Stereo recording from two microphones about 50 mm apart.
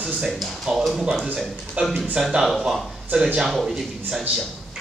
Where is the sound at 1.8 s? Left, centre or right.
Right.